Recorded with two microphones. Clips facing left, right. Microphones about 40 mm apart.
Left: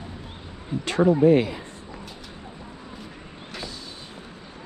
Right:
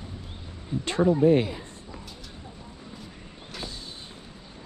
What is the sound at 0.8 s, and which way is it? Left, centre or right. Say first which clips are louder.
Speech: left 3 dB; left.